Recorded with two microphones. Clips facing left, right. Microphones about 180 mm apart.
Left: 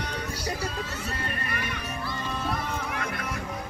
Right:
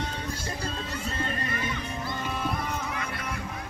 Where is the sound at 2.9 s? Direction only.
60° left (ahead or behind).